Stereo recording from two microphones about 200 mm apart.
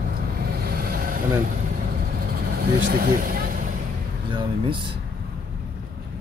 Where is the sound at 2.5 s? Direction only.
50° right (ahead or behind).